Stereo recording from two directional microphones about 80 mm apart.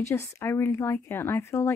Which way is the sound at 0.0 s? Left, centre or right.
Left.